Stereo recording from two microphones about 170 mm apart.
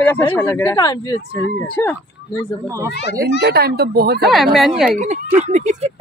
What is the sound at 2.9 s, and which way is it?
Speech, 90° left.